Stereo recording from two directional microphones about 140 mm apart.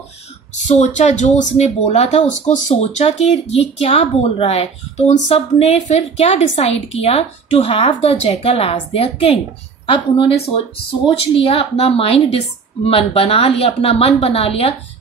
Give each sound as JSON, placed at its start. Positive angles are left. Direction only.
{"t": 0.7, "sound": "a woman's voice", "side_deg": 60}